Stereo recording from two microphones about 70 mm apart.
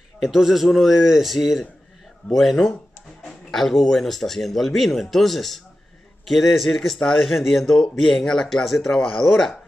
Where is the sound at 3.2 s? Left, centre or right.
Centre.